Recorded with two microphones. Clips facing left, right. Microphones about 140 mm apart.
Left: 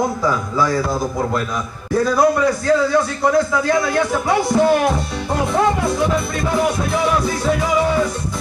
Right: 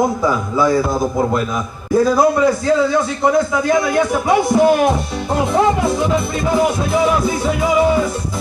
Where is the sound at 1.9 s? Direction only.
20° right (ahead or behind).